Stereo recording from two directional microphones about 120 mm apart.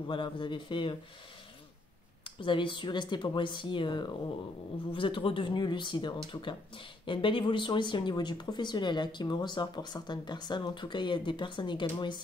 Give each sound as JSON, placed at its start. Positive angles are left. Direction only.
{"t": 0.1, "sound": "speech", "side_deg": 40}
{"t": 2.2, "sound": "speech", "side_deg": 45}